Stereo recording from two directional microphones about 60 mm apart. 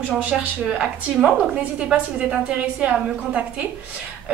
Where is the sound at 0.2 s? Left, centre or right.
Right.